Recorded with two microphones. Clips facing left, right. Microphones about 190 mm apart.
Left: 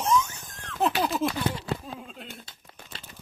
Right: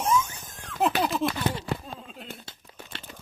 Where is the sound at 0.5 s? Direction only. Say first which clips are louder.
Right 1 dB; 10° right (ahead or behind).